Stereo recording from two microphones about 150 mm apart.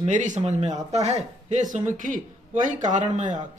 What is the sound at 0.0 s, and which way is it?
A man's voice, 55° right (ahead or behind).